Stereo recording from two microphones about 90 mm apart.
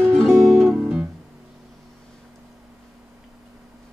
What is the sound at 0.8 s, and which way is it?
Music, 15° right (ahead or behind).